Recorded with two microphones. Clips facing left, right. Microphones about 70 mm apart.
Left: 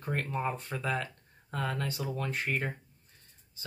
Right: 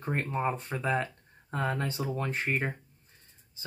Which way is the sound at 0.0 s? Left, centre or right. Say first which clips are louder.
Right 3 dB; right.